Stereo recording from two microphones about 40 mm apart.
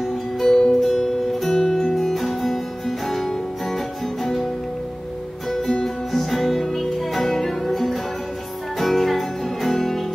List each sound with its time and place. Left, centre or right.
0.4 s music: centre
6.1 s music: centre